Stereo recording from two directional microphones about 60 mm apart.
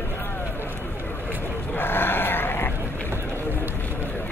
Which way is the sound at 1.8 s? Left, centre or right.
Left.